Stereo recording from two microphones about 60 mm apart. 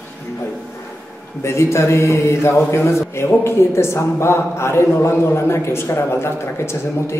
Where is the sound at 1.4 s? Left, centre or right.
Left.